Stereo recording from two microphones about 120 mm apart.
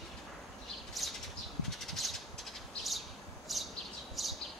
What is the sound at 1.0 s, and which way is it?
Bird, centre (ahead or behind).